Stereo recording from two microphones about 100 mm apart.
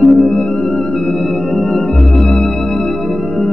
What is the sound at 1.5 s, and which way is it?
Organ, 5° left (ahead or behind).